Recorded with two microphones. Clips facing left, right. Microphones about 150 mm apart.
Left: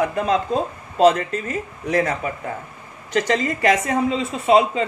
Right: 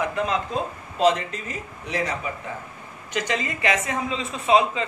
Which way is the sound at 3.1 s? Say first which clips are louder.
Left 7 dB; 45° left (ahead or behind).